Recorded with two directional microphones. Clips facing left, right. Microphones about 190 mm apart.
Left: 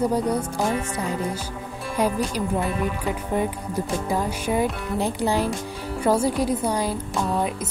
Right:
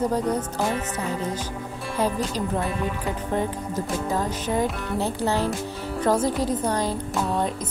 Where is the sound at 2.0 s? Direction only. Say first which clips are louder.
Left 2 dB; 15° left (ahead or behind).